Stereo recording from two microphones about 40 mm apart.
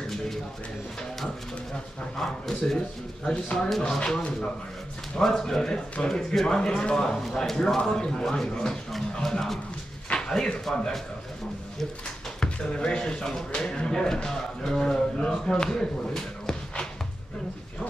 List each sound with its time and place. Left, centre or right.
2.1 s speech: centre
3.8 s a man's voice: centre
6.4 s a man's voice: left
10.1 s speech: centre
12.6 s speech: left